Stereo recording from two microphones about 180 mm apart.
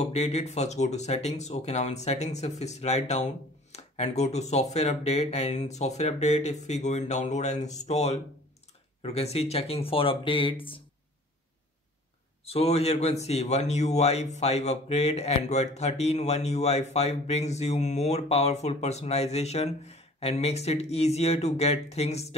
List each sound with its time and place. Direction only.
0.0 s a man's voice: 35° left (ahead or behind)
12.4 s a man's voice: 35° left (ahead or behind)